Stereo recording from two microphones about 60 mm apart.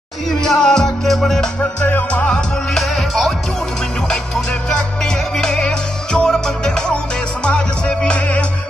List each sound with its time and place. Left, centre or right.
0.4 s music: centre
1.6 s music: left
2.7 s music: centre
4.6 s music: centre